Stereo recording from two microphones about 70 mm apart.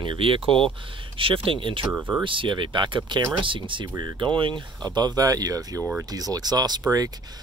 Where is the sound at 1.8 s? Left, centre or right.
Right.